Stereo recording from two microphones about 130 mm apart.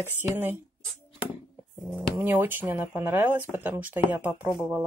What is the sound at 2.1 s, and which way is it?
Speech, 15° right (ahead or behind).